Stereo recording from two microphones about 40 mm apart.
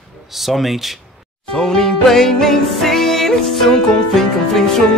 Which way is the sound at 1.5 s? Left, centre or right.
Centre.